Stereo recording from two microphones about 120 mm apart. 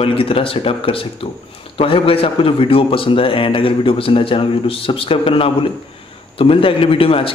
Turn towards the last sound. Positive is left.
turn(degrees=50)  # may be behind; listen again after turning